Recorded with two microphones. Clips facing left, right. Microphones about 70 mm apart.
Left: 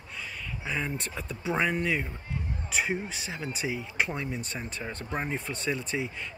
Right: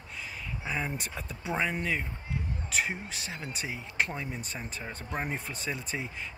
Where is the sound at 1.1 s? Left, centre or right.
Centre.